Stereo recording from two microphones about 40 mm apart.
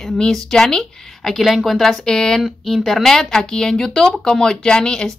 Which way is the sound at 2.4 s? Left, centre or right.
Centre.